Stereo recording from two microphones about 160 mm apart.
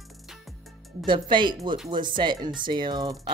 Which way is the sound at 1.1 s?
30° right (ahead or behind).